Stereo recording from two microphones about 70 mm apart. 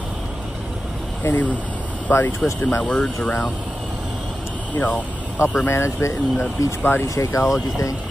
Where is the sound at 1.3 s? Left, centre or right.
Left.